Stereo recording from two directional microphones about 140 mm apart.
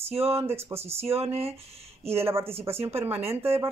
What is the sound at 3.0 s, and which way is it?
Speech, 45° right (ahead or behind).